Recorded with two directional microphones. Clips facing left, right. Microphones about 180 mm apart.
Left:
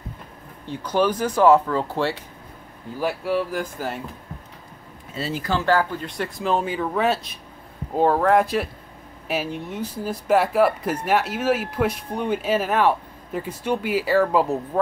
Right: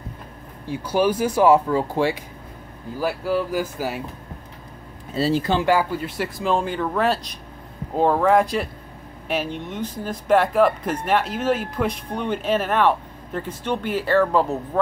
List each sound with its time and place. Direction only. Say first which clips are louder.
0.7 s speech: right 1 dB; 10° right (ahead or behind)
3.0 s speech: right 1 dB; centre (ahead or behind)
5.1 s speech: right 8 dB; 35° right (ahead or behind)
5.5 s speech: right 1 dB; 15° right (ahead or behind); by 14.8 s 10° left (ahead or behind)